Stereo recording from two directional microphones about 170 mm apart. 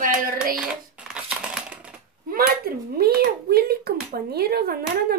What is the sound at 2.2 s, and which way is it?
Speech, 60° right (ahead or behind).